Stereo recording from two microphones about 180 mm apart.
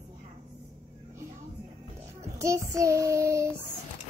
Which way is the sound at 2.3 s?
15° right (ahead or behind).